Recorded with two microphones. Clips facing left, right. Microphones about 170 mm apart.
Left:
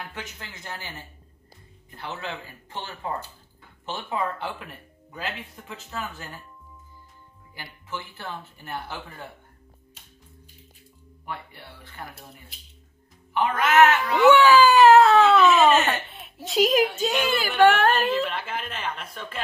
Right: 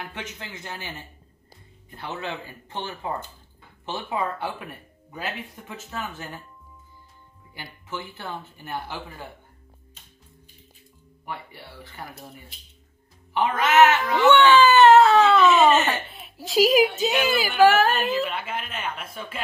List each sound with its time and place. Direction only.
0.0 s speech: 20° right (ahead or behind)
2.1 s speech: 20° right (ahead or behind)
5.9 s speech: 20° right (ahead or behind)
13.3 s speech: 20° right (ahead or behind)
14.2 s speech: 5° left (ahead or behind)